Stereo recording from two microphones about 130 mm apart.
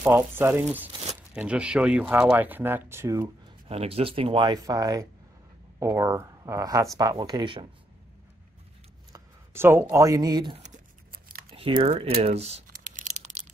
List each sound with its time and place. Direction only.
0.0 s speech: 15° right (ahead or behind)
3.6 s speech: 50° right (ahead or behind)
9.1 s speech: 20° right (ahead or behind); by 10.6 s 35° right (ahead or behind)
11.5 s speech: 45° right (ahead or behind)
12.9 s crushing: 80° right